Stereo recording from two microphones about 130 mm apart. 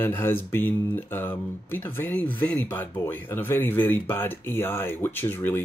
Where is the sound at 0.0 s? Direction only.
15° left (ahead or behind).